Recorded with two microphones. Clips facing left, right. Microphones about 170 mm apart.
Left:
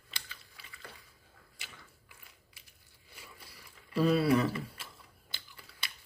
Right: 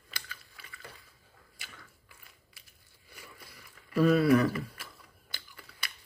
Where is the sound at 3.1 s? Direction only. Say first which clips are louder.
Right 2 dB; 30° left (ahead or behind).